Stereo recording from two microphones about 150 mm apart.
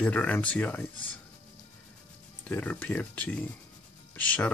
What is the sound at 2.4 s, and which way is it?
Speech, 10° left (ahead or behind).